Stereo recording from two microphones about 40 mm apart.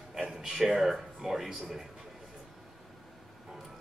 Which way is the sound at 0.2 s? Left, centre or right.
Centre.